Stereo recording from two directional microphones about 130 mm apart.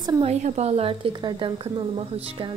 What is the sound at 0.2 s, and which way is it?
A woman's voice, 55° right (ahead or behind).